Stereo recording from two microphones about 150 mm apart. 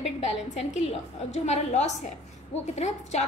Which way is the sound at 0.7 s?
45° left (ahead or behind).